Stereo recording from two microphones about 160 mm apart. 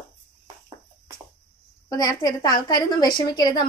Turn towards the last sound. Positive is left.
turn(degrees=25)  # may be behind; listen again after turning